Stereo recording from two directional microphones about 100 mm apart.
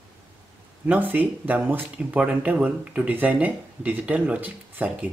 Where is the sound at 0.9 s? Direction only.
15° right (ahead or behind).